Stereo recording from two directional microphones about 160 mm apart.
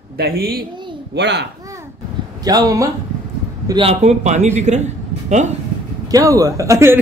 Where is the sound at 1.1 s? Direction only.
90° right.